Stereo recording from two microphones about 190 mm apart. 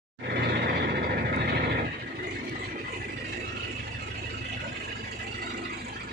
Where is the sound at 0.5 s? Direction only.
55° right (ahead or behind).